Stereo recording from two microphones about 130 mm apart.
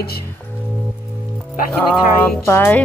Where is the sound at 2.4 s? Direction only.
15° left (ahead or behind).